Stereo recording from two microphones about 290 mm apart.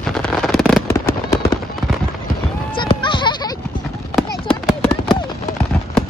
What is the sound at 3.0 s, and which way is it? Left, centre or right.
Music, centre.